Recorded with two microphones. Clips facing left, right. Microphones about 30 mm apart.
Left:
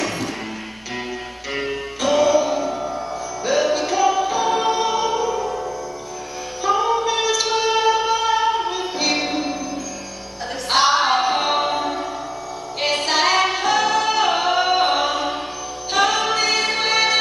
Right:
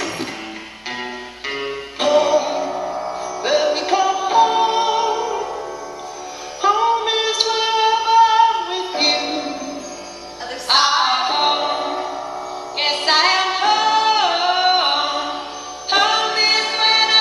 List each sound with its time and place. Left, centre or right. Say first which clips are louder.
2.0 s music: right 2 dB; right
4.6 s choir: right 3 dB; right
5.2 s music: left 1 dB; right
6.6 s singing: right 3 dB; right
10.7 s music: right 1 dB; right